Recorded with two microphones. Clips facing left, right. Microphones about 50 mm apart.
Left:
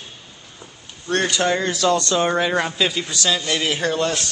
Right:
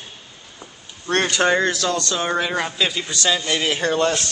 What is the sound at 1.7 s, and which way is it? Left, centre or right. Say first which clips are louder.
Speech: left 4 dB; left.